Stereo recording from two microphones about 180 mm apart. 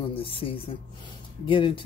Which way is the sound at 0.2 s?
30° left (ahead or behind).